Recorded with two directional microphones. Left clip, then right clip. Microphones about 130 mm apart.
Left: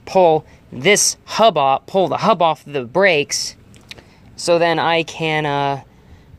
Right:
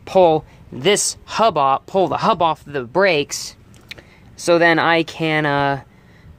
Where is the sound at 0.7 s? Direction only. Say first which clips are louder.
Left 3 dB; 10° right (ahead or behind).